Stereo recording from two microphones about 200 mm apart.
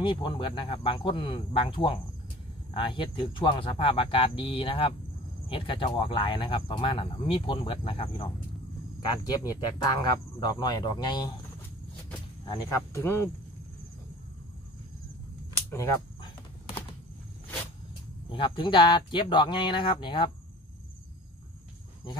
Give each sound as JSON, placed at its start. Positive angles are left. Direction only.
{"t": 0.0, "sound": "speech", "side_deg": 25}
{"t": 12.4, "sound": "speech", "side_deg": 20}
{"t": 15.7, "sound": "speech", "side_deg": 15}
{"t": 18.3, "sound": "speech", "side_deg": 25}